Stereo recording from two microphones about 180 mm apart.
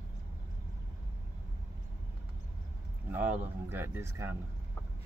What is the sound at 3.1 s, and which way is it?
Speech, 10° right (ahead or behind).